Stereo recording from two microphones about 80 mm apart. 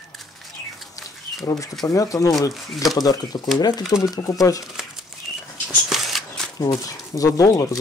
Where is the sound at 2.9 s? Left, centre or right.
Left.